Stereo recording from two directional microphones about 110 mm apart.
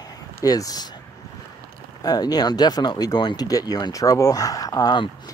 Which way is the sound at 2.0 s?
35° left (ahead or behind).